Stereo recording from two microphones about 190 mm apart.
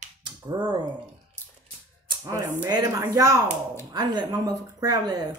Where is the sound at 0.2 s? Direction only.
25° right (ahead or behind).